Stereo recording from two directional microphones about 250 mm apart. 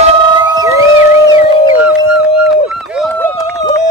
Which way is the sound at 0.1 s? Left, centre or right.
Centre.